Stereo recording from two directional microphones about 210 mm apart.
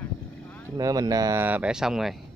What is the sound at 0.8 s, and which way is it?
Speech, 15° right (ahead or behind).